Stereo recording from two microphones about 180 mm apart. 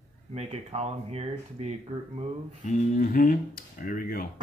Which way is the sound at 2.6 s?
45° left (ahead or behind).